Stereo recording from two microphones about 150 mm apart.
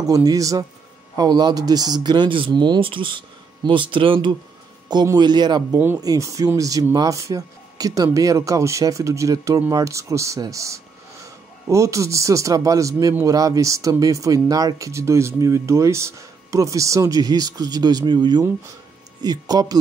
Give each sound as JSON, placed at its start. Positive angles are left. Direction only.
{"t": 0.0, "sound": "speech", "side_deg": -25}